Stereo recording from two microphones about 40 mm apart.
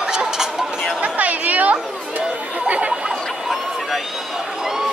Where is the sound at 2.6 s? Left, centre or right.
Right.